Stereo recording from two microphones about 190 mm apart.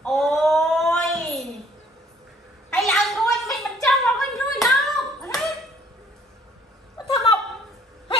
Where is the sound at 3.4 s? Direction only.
Centre (ahead or behind).